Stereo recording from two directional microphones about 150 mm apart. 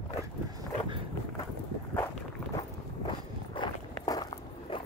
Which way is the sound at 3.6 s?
25° left (ahead or behind).